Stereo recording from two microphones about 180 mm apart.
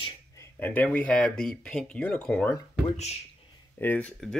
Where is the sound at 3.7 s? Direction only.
10° left (ahead or behind).